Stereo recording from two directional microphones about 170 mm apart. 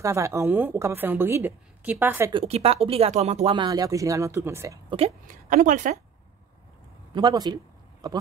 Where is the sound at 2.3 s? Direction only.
35° right (ahead or behind); by 4.8 s 20° right (ahead or behind).